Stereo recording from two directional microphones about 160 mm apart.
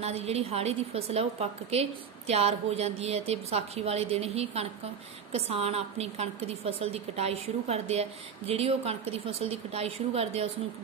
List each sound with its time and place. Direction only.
0.0 s a woman's voice: 40° right (ahead or behind)